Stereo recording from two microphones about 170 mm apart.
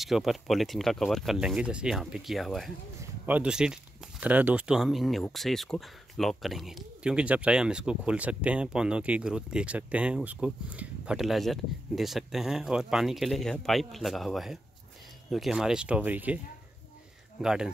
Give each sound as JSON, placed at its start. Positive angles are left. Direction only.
{"t": 0.0, "sound": "speech", "side_deg": 0}
{"t": 17.4, "sound": "speech", "side_deg": -5}